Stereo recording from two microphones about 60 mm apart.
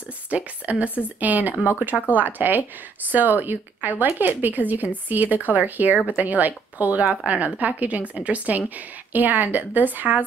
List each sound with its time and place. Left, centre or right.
0.3 s speech: right